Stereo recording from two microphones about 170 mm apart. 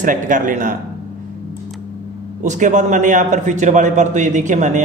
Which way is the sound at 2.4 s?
45° right (ahead or behind).